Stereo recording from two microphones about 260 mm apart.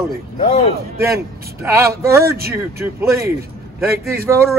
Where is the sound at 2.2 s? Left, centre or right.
Right.